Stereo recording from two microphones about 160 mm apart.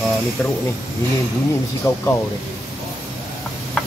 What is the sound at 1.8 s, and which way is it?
Speech, 20° left (ahead or behind).